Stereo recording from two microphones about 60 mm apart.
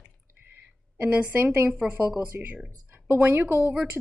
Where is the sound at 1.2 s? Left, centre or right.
Right.